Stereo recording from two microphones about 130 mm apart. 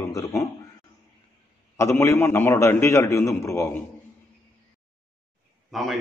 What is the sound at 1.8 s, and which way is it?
A man's voice, 20° left (ahead or behind).